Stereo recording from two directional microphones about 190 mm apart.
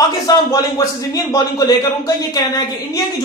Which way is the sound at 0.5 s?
20° left (ahead or behind).